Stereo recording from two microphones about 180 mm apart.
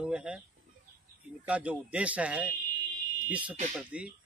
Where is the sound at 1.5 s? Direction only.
5° right (ahead or behind).